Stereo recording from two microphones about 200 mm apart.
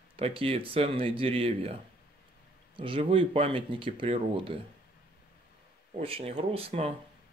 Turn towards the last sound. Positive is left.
turn(degrees=-30)  # may be behind; listen again after turning